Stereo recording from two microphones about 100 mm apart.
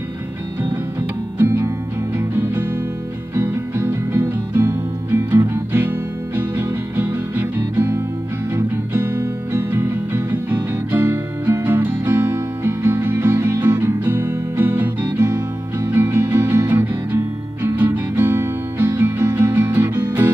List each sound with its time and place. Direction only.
1.4 s music: 25° right (ahead or behind)